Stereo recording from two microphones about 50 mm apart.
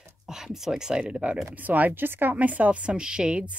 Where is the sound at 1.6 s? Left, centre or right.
Right.